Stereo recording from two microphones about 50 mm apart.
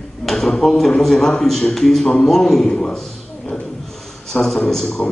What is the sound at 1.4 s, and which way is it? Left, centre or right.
A man's voice, centre.